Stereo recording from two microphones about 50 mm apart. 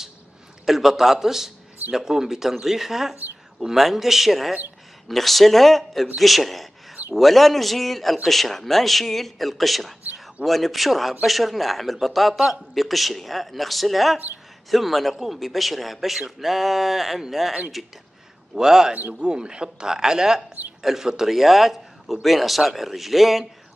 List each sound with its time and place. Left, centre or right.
0.7 s a man's voice: centre
18.5 s a man's voice: centre